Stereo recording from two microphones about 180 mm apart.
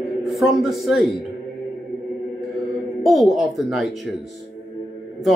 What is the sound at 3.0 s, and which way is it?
Speech, centre (ahead or behind).